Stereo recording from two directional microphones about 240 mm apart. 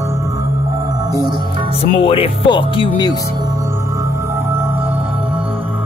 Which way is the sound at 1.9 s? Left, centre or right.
Left.